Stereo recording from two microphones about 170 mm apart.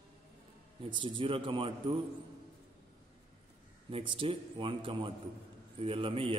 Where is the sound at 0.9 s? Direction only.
30° right (ahead or behind).